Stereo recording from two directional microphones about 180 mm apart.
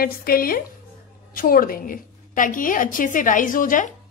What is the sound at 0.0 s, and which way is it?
A woman's voice, 55° left (ahead or behind).